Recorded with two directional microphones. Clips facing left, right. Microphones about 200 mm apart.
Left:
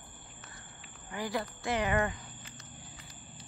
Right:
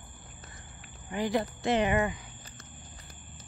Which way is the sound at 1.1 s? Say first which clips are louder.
Right 6 dB; 20° right (ahead or behind).